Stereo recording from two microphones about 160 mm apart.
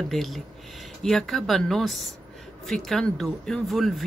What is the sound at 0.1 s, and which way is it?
Speech, centre (ahead or behind).